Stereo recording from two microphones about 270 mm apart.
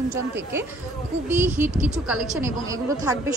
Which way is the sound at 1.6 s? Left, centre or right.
Right.